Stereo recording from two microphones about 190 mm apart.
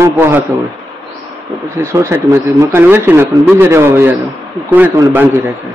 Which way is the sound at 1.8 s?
15° right (ahead or behind).